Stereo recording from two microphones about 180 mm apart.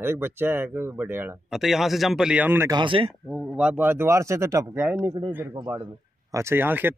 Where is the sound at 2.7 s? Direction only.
25° right (ahead or behind).